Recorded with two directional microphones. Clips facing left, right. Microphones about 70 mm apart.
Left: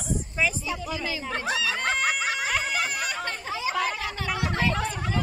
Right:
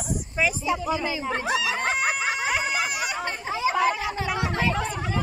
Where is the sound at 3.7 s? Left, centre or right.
Centre.